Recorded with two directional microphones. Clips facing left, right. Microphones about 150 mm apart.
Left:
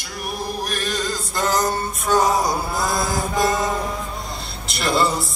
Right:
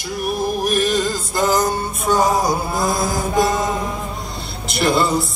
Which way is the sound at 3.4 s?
20° right (ahead or behind).